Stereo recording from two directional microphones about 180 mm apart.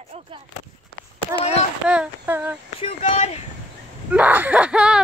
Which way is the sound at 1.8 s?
5° right (ahead or behind).